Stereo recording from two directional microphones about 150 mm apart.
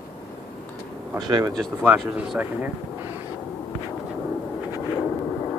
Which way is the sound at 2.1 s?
10° right (ahead or behind).